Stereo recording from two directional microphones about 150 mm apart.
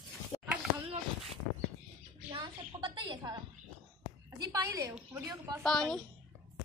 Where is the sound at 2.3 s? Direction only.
30° right (ahead or behind).